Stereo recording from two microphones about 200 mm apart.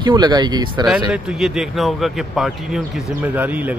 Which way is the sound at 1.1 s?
Centre (ahead or behind).